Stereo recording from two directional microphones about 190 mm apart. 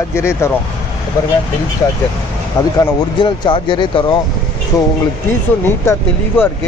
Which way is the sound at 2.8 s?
25° left (ahead or behind).